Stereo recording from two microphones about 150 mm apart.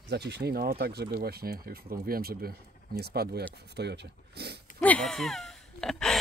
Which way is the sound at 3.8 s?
90° right.